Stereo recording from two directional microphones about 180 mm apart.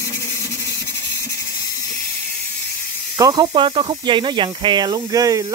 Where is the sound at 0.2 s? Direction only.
20° left (ahead or behind).